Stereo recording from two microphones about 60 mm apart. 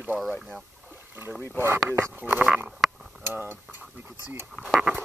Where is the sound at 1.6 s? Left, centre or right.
Right.